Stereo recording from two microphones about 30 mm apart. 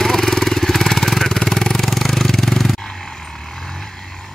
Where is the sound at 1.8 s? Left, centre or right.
Centre.